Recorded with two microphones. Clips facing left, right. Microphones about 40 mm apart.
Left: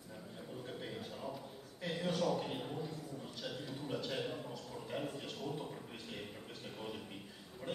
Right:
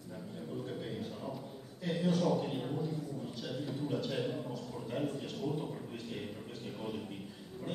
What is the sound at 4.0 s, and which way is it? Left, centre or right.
Speech, centre.